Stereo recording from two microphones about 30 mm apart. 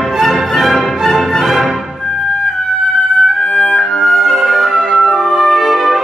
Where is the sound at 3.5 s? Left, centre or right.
Left.